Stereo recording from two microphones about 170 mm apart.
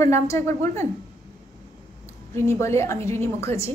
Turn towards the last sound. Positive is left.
turn(degrees=15)  # may be behind; listen again after turning